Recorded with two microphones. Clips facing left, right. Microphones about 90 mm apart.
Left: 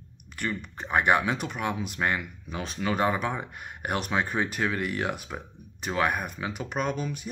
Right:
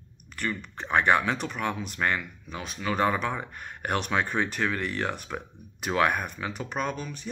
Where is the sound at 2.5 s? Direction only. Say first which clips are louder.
Left 3 dB; 30° left (ahead or behind).